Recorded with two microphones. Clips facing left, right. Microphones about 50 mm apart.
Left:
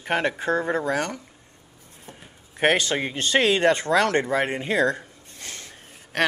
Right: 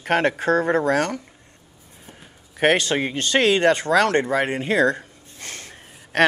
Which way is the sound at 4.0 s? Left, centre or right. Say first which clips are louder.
Right 3 dB; right.